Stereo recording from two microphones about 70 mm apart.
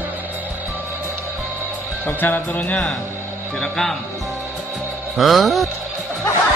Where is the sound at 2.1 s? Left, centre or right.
Left.